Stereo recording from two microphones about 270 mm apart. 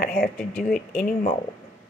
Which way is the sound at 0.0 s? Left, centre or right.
Left.